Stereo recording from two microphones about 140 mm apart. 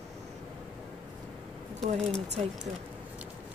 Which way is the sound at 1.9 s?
50° right (ahead or behind).